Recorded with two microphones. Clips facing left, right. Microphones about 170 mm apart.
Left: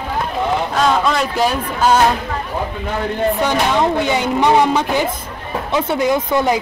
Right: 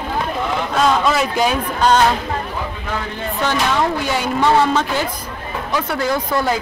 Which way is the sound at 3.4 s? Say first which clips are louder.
Right 2 dB; 20° left (ahead or behind).